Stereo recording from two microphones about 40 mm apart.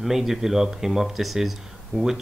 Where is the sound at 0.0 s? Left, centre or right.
Centre.